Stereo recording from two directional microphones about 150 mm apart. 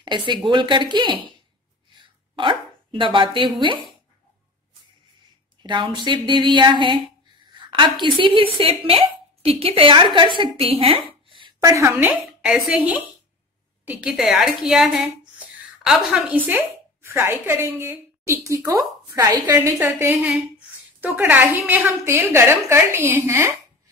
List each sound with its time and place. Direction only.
0.0 s speech: 30° right (ahead or behind)
2.0 s a sound: 35° right (ahead or behind)
5.6 s speech: 30° right (ahead or behind)
11.6 s a woman's voice: 15° right (ahead or behind)